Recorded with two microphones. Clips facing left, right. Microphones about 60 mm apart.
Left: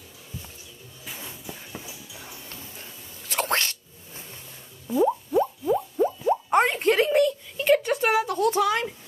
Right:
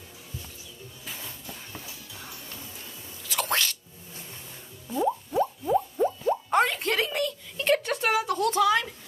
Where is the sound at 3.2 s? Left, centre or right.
Left.